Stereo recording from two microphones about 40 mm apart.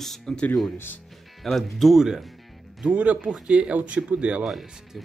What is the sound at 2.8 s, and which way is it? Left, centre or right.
Speech, right.